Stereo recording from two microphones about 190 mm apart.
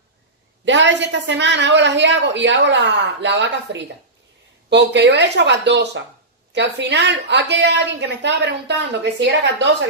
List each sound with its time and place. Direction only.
0.7 s a woman's voice: 70° right (ahead or behind)